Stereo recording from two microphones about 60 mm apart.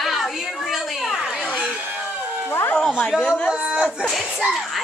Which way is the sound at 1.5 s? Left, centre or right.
Right.